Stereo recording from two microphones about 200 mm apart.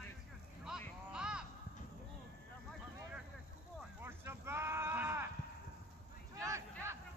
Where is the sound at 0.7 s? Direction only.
5° right (ahead or behind).